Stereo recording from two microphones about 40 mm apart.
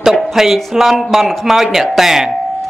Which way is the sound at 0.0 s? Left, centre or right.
Centre.